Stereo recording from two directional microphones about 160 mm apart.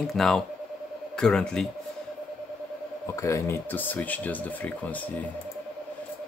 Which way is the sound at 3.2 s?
20° left (ahead or behind).